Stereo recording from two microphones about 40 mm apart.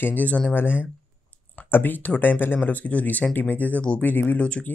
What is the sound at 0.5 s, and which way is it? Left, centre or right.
Speech, left.